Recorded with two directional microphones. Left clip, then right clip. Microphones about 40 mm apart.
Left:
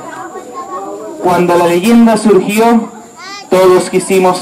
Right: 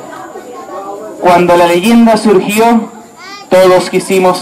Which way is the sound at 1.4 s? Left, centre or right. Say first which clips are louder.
Right 2 dB; right.